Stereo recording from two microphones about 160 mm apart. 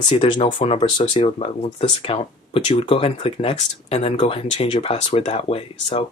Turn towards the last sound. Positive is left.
turn(degrees=40)  # may be behind; listen again after turning